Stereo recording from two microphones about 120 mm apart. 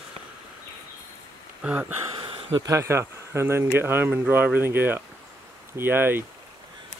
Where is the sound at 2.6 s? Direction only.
25° right (ahead or behind).